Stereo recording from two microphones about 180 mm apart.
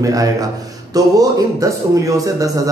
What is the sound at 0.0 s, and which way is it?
A man's voice, 20° right (ahead or behind).